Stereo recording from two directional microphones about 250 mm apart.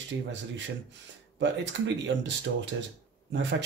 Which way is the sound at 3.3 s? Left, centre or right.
Right.